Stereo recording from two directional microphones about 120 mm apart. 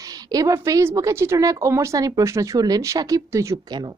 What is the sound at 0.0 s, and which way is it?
A woman's voice, 30° right (ahead or behind).